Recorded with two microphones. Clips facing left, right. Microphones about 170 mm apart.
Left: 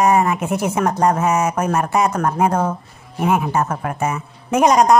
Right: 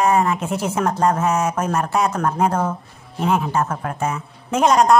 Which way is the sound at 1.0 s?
Centre (ahead or behind).